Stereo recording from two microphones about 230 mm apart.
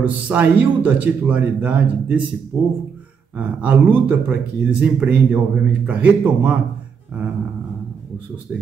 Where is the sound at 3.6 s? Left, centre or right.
Centre.